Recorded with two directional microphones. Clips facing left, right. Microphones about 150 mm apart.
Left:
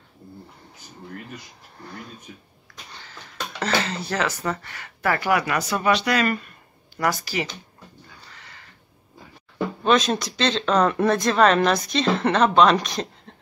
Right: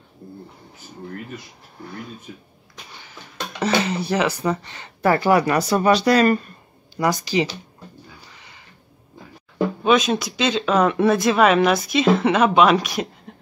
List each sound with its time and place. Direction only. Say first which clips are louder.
2.9 s speech: even; 15° right (ahead or behind); by 6.5 s 35° right (ahead or behind)
7.0 s speech: right 4 dB; 15° right (ahead or behind)
8.3 s crow: even; 15° right (ahead or behind)
9.8 s speech: right 1 dB; centre (ahead or behind)